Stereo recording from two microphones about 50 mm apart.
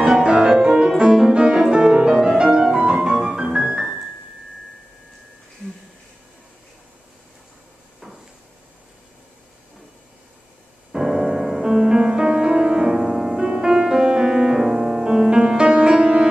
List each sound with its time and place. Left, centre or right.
0.0 s music: centre
10.9 s music: centre